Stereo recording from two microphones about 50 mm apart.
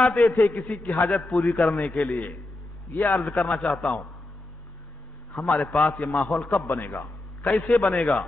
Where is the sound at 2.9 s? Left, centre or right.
Left.